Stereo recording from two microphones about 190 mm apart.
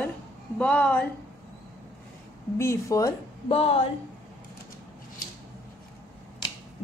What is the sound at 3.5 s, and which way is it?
Speech, 30° left (ahead or behind).